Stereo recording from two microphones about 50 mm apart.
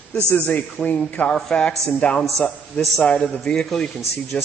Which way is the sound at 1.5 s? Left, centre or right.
Centre.